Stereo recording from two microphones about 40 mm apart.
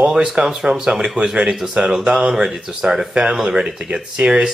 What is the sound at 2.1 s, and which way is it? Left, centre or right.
Speech, right.